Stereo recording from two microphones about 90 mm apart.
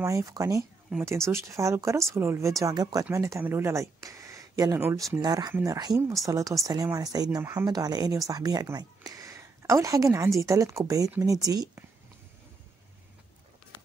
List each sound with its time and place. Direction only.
0.0 s speech: 35° right (ahead or behind)